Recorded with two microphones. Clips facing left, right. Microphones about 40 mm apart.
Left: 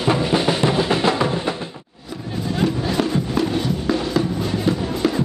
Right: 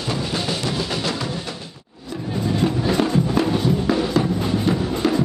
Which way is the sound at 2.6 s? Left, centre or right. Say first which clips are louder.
Even; centre.